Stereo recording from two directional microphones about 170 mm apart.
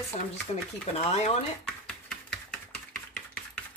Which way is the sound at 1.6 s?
5° left (ahead or behind).